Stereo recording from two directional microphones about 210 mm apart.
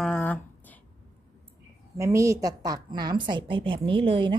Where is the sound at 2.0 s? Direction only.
15° right (ahead or behind).